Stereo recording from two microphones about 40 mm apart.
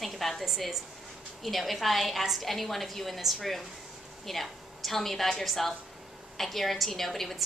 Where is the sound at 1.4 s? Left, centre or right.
Centre.